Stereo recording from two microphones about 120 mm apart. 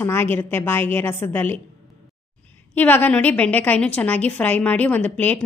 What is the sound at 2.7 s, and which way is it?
A woman's voice, 15° left (ahead or behind).